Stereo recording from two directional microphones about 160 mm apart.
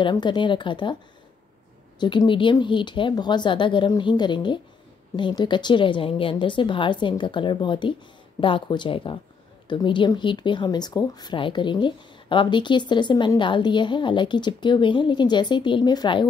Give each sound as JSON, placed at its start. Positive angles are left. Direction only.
{"t": 0.0, "sound": "speech", "side_deg": 30}
{"t": 2.0, "sound": "speech", "side_deg": 30}